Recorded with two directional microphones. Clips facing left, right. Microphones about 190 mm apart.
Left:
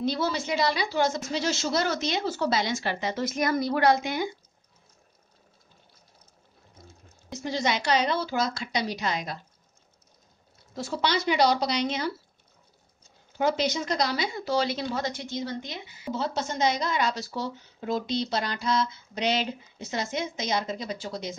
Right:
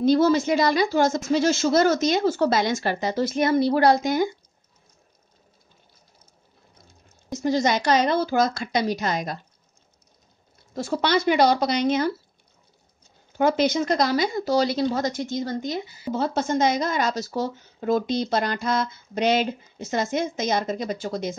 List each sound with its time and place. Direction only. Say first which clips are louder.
0.0 s speech: right 10 dB; 50° right (ahead or behind)
7.4 s speech: right 6 dB; 45° right (ahead or behind)
10.7 s speech: right 5 dB; 50° right (ahead or behind)
13.4 s speech: right 5 dB; 55° right (ahead or behind)